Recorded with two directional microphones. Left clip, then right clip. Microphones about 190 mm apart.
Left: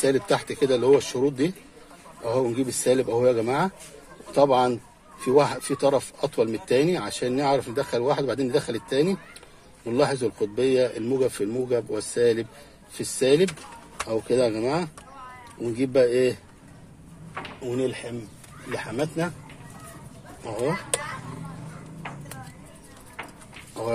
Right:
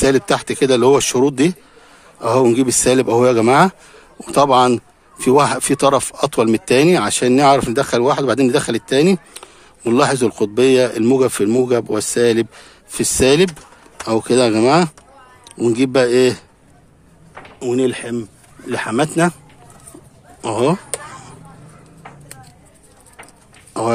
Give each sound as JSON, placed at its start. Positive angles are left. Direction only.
{"t": 0.0, "sound": "speech", "side_deg": -40}
{"t": 17.6, "sound": "speech", "side_deg": -60}
{"t": 20.4, "sound": "speech", "side_deg": -55}